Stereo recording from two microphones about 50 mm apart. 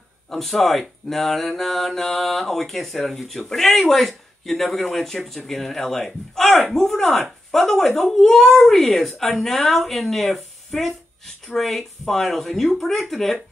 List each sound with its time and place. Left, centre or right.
0.3 s speech: centre